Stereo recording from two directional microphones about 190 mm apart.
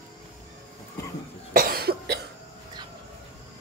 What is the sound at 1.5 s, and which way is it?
Cough, 50° right (ahead or behind).